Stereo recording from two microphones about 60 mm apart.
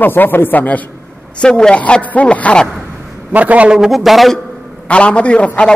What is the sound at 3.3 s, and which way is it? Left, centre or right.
Speech, right.